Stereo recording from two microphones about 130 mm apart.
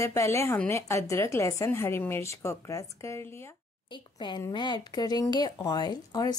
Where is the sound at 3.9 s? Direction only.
35° left (ahead or behind).